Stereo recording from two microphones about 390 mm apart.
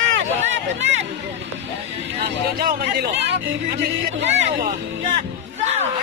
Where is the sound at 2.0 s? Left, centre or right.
Right.